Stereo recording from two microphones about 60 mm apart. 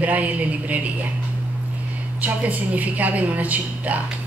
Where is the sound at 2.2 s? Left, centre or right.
Right.